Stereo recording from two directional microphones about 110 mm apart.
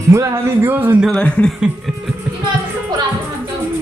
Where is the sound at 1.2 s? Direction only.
10° left (ahead or behind).